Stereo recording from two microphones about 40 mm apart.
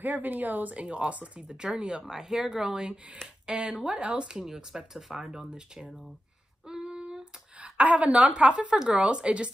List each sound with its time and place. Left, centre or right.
0.0 s speech: right
0.8 s speech: right; by 5.5 s centre
6.7 s a sound: centre; by 8.3 s right
8.3 s speech: right
8.7 s speech: centre
9.0 s speech: right